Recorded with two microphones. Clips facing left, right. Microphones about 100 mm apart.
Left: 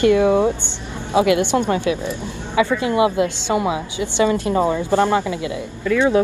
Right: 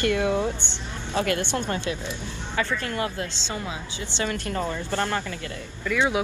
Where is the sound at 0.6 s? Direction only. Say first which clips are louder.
Left 5 dB; 10° left (ahead or behind).